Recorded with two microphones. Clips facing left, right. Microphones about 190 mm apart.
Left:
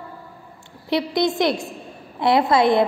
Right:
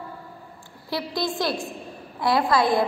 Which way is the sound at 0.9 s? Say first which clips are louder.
Left 7 dB; 20° left (ahead or behind).